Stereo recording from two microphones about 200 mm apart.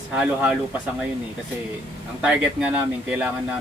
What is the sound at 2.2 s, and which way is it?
Speech, 5° right (ahead or behind).